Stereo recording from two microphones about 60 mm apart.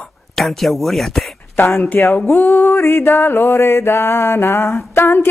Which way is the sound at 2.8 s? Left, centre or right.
Left.